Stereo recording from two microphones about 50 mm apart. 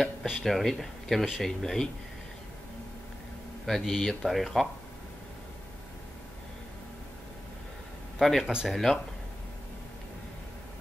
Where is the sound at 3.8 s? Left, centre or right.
Centre.